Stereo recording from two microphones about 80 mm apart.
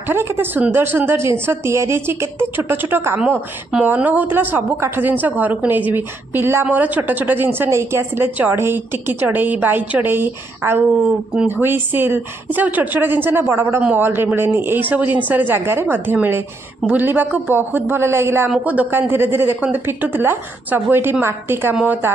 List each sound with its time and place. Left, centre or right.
0.1 s a woman's voice: right